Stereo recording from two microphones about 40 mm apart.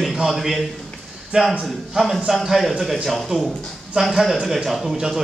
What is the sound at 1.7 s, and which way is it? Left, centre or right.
Speech, centre.